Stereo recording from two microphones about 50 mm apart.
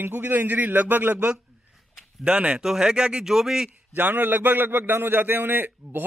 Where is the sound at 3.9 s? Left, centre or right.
Right.